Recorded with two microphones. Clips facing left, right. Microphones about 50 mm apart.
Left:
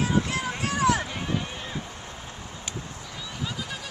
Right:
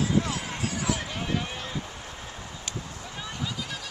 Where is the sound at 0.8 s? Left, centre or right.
Left.